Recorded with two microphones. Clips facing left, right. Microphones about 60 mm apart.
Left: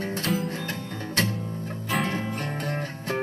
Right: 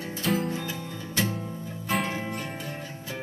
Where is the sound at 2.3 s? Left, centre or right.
Left.